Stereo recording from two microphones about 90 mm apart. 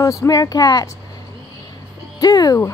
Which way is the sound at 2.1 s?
45° left (ahead or behind).